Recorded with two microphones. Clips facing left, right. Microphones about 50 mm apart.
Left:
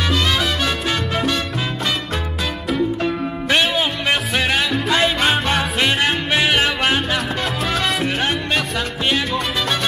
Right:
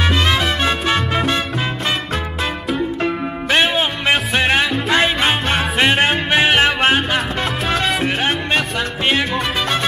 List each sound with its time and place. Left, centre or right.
0.0 s music: right
3.0 s music: right